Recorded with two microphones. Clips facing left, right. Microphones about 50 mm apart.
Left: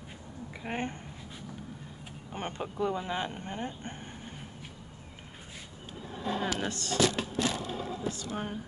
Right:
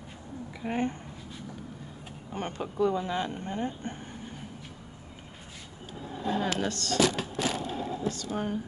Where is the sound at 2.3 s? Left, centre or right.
Centre.